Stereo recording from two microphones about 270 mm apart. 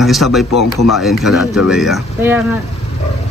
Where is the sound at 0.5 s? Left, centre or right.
Left.